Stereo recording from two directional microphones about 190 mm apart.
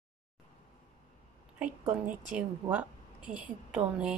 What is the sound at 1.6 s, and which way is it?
A woman's voice, 5° right (ahead or behind).